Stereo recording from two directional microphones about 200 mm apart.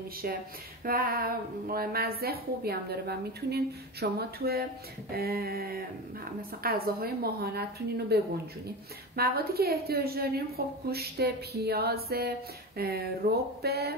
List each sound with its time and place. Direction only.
0.8 s a woman's voice: 45° right (ahead or behind)